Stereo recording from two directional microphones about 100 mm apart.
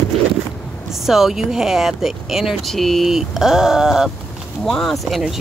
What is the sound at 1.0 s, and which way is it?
Speech, 5° right (ahead or behind).